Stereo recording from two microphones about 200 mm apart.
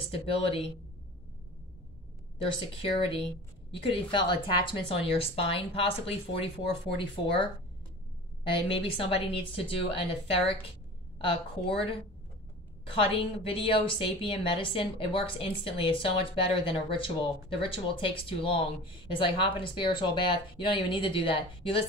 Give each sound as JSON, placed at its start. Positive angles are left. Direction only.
{"t": 0.0, "sound": "a woman's voice", "side_deg": 30}
{"t": 3.9, "sound": "a woman's voice", "side_deg": 25}
{"t": 8.5, "sound": "a woman's voice", "side_deg": 25}